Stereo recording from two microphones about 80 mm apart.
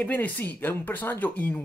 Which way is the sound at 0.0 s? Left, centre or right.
Centre.